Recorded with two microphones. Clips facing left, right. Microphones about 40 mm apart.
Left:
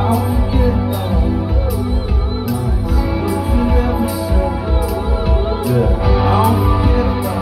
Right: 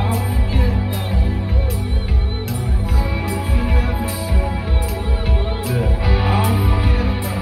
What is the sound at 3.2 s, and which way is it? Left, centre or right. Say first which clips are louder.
Music: left 6 dB; right.